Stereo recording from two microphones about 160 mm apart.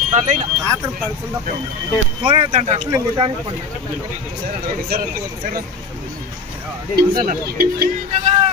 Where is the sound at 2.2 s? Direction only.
35° right (ahead or behind).